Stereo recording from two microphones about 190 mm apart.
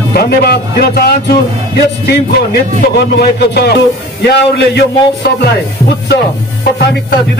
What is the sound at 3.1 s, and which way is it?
Speech, 60° left (ahead or behind).